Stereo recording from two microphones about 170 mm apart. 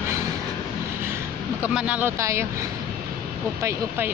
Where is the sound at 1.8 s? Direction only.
10° right (ahead or behind).